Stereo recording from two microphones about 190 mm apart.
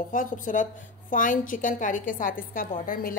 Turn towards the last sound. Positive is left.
turn(degrees=45)  # may be behind; listen again after turning